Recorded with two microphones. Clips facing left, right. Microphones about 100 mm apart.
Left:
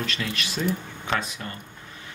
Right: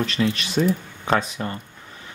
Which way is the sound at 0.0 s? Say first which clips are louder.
Right 7 dB; 30° right (ahead or behind).